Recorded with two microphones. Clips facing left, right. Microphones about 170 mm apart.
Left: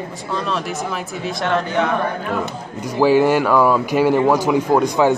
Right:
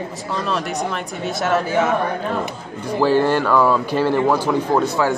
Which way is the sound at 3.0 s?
10° left (ahead or behind).